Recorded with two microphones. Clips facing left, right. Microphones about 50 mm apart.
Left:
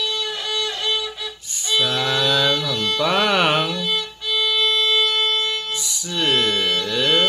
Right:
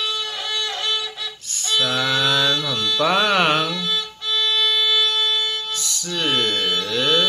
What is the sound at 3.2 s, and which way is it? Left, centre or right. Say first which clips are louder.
Speech: even; centre.